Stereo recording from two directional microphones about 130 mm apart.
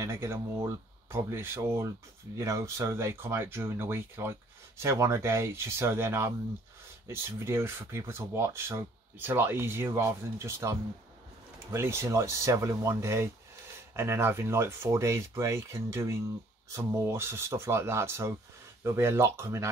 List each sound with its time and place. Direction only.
0.0 s speech: 20° right (ahead or behind)